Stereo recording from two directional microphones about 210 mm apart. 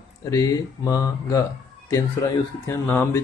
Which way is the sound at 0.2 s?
15° left (ahead or behind).